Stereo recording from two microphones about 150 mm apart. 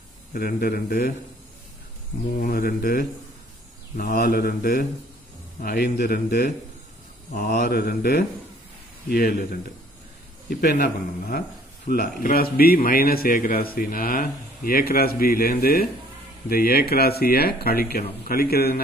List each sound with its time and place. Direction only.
0.3 s speech: 80° left
2.4 s speech: 80° left
7.3 s speech: 70° left (ahead or behind)
10.5 s a man's voice: 90° left